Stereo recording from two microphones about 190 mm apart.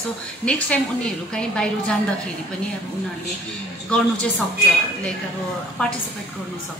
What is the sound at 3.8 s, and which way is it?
Speech, 5° left (ahead or behind).